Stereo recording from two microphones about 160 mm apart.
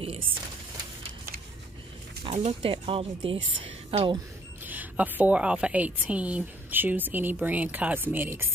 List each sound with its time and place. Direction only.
0.0 s speech: 35° right (ahead or behind)
2.3 s a woman's voice: 30° right (ahead or behind)
4.6 s a woman's voice: 10° right (ahead or behind)